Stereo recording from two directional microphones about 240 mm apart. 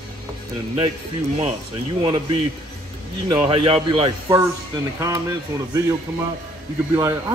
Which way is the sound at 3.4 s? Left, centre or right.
Right.